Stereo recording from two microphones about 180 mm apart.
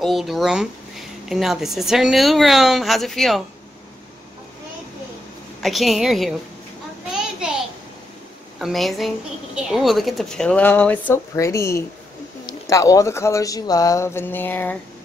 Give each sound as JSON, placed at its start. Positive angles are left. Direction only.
{"t": 0.0, "sound": "speech", "side_deg": 0}
{"t": 5.6, "sound": "speech", "side_deg": 0}
{"t": 7.1, "sound": "a sound", "side_deg": -5}
{"t": 8.5, "sound": "speech", "side_deg": 0}